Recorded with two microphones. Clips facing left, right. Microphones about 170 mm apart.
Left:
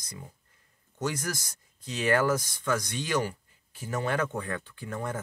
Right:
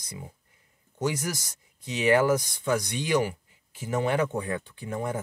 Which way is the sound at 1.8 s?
15° right (ahead or behind).